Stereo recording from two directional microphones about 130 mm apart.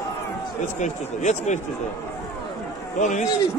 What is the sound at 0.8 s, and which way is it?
Speech, 65° left (ahead or behind).